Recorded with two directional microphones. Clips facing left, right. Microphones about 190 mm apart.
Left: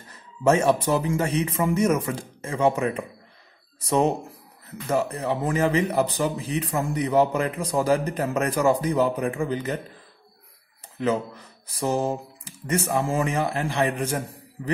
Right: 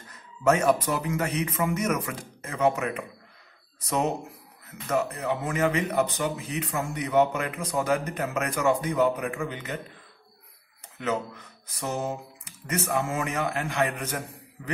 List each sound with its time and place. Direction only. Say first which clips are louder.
0.1 s a man's voice: left 3 dB; 30° left (ahead or behind)
11.0 s a man's voice: left 5 dB; 30° left (ahead or behind)